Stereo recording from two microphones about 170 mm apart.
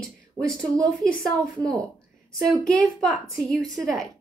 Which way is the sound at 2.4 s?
5° left (ahead or behind).